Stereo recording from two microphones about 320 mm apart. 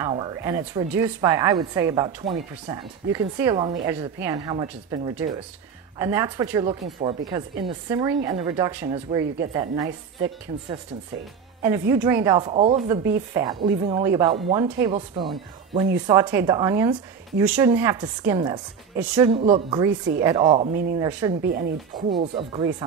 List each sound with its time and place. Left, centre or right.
0.0 s speech: centre
11.9 s speech: centre
21.4 s speech: right
22.2 s speech: centre